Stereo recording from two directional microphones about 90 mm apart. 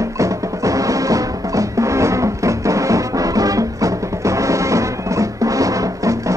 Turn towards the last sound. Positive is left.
turn(degrees=-35)  # may be behind; listen again after turning